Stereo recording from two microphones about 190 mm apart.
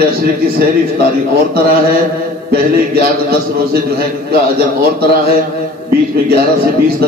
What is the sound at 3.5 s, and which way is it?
A man's voice, 55° right (ahead or behind).